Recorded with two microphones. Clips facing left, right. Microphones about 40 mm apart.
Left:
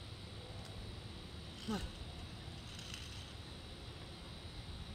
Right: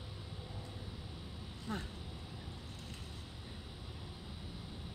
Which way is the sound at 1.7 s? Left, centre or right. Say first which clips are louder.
Even; right.